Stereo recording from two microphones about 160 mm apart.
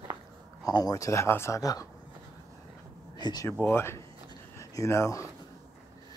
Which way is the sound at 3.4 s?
15° left (ahead or behind).